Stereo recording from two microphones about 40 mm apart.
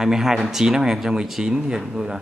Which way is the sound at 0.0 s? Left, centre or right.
Centre.